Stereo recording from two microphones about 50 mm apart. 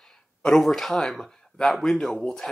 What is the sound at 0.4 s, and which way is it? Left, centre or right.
Speech, centre.